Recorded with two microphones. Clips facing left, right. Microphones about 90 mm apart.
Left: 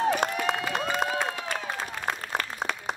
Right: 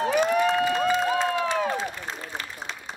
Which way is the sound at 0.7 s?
65° left (ahead or behind).